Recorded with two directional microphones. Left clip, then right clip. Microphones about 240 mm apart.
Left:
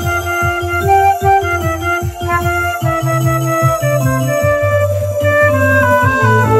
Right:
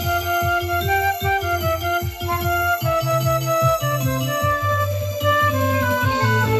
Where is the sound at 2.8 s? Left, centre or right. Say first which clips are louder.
Left 4 dB; right.